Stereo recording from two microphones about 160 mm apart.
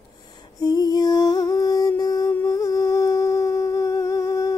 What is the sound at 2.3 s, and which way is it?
Humming, 15° left (ahead or behind).